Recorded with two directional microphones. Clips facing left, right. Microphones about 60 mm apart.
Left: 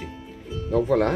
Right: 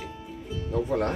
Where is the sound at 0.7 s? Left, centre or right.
Left.